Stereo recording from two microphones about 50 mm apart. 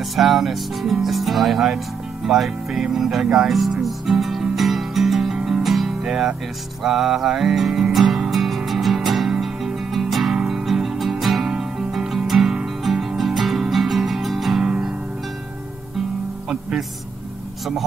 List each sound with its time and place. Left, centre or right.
0.1 s music: centre
2.2 s speech: centre
3.8 s music: centre
6.8 s speech: centre
8.0 s music: centre
8.3 s music: centre
10.3 s music: centre
10.6 s music: centre